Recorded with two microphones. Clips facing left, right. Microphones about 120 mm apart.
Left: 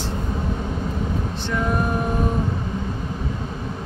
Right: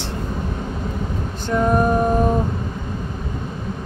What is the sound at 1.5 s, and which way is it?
Speech, 40° right (ahead or behind).